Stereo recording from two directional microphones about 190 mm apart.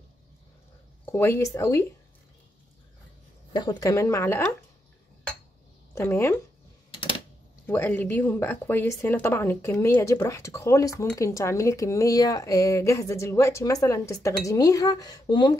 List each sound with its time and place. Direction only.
1.1 s speech: 15° left (ahead or behind)
3.5 s speech: 20° left (ahead or behind)
5.9 s speech: 15° left (ahead or behind)
7.6 s speech: 10° left (ahead or behind)